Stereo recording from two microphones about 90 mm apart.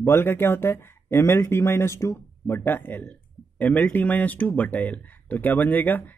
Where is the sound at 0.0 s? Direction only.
25° left (ahead or behind).